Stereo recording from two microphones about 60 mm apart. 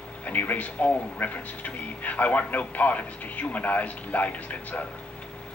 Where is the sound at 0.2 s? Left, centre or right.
Left.